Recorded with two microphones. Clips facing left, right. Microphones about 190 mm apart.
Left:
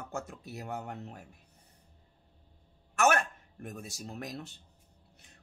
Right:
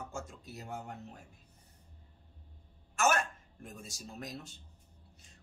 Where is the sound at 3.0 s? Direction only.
60° left (ahead or behind).